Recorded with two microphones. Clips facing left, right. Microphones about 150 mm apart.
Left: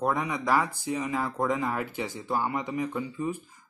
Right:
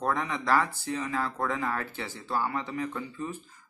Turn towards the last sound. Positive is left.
turn(degrees=15)  # may be behind; listen again after turning